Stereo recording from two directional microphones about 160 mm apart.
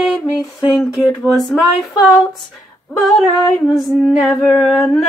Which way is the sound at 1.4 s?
Centre (ahead or behind).